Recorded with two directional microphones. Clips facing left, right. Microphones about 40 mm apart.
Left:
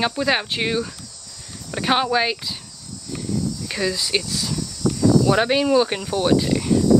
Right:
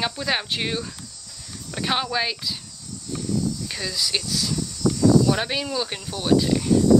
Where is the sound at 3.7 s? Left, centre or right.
Centre.